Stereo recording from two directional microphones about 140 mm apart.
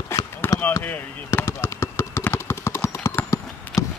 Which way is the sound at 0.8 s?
15° left (ahead or behind).